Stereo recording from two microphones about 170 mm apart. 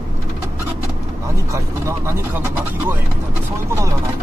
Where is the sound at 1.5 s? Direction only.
15° right (ahead or behind).